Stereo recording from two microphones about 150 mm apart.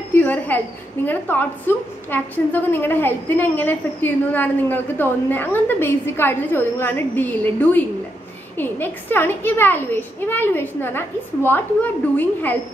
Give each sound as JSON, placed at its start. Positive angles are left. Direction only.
{"t": 0.1, "sound": "a woman's voice", "side_deg": 10}